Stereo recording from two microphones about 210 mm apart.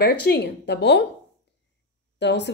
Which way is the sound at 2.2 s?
55° left (ahead or behind).